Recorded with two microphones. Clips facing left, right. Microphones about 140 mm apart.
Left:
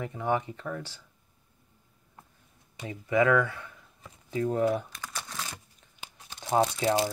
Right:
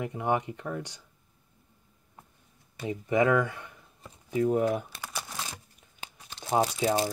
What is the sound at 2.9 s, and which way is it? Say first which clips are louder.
Speech: even; 20° right (ahead or behind).